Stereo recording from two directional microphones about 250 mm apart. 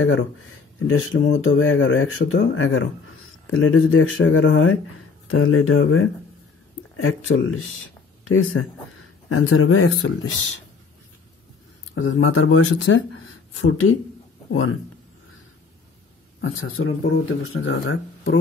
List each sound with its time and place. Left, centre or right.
0.0 s speech: left
8.6 s speech: left
11.9 s speech: left
16.3 s speech: left